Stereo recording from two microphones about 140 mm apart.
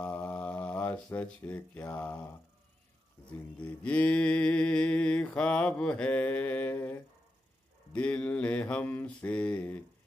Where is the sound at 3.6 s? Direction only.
10° left (ahead or behind).